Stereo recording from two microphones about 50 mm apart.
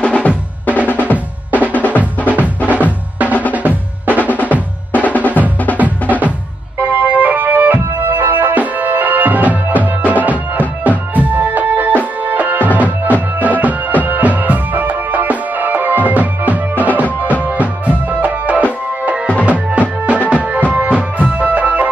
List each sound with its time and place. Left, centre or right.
0.0 s drum: left
0.3 s drum: right
0.8 s drum: left
1.1 s drum: right
1.7 s drum: left
2.2 s music: right
3.5 s drum: right
4.2 s drum: left
5.7 s music: left
6.8 s organ: right
7.8 s music: right